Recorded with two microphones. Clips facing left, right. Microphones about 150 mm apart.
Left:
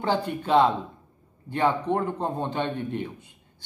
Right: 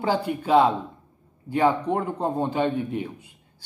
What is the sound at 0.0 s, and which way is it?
A man's voice, 10° right (ahead or behind).